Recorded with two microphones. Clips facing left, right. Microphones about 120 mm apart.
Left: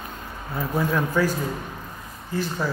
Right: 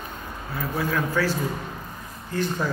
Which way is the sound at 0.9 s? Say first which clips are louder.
Left 1 dB; 20° left (ahead or behind).